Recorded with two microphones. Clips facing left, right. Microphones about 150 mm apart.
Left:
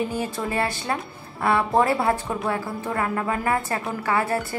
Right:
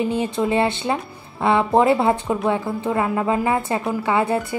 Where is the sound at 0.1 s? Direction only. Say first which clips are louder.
Right 6 dB; 20° right (ahead or behind).